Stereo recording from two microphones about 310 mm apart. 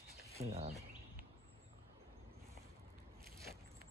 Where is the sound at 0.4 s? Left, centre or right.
Centre.